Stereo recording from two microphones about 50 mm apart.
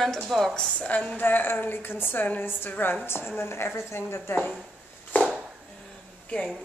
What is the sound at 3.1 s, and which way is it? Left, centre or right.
A woman's voice, left.